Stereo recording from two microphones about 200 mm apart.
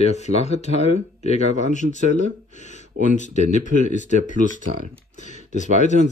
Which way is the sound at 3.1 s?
35° left (ahead or behind).